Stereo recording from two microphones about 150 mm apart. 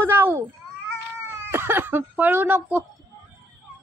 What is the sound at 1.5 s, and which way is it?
Speech, 15° right (ahead or behind).